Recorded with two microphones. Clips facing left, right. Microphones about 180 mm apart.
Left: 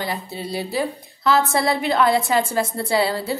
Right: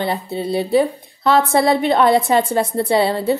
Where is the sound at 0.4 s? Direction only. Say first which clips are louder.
Right 9 dB; 25° right (ahead or behind).